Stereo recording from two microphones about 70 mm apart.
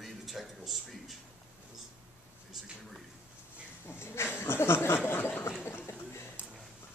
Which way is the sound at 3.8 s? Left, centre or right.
Left.